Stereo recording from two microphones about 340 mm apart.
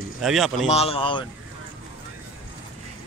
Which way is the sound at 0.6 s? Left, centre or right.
Centre.